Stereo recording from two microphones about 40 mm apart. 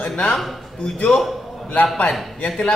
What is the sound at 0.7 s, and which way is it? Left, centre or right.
Speech, left.